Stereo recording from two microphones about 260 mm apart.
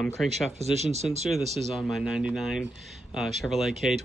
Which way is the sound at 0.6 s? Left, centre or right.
Right.